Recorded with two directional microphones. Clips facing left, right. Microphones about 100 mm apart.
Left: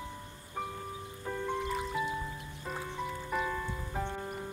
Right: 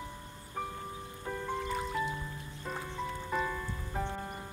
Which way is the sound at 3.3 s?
Centre (ahead or behind).